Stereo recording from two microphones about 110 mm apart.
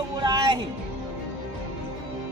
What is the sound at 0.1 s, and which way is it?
Music, 40° right (ahead or behind).